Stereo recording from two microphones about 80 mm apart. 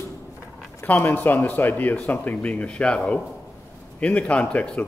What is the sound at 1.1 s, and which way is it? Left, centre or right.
A man's voice, left.